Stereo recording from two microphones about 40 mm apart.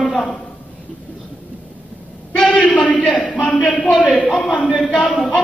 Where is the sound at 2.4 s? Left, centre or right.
Left.